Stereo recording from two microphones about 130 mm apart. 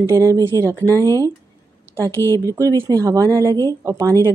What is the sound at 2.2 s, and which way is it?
Speech, 20° left (ahead or behind).